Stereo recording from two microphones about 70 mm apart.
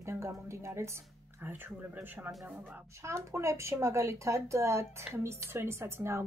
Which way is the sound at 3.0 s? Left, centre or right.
Right.